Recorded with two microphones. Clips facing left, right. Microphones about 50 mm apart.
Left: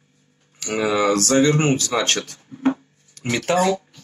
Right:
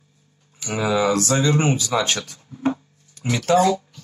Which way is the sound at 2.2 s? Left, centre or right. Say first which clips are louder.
Left 2 dB; left.